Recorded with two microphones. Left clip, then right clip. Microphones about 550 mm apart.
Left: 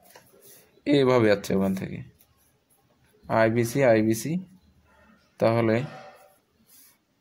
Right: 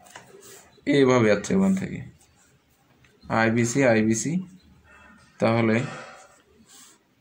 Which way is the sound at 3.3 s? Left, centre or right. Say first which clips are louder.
Even; left.